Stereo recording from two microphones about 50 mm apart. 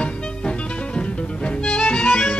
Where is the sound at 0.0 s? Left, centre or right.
Centre.